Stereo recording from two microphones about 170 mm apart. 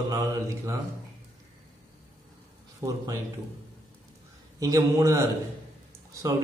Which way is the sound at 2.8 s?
20° right (ahead or behind).